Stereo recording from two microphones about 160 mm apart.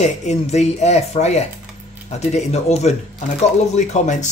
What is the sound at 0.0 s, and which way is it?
Speech, 45° left (ahead or behind).